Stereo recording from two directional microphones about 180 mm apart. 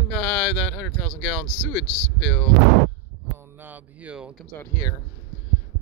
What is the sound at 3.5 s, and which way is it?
Speech, 10° right (ahead or behind).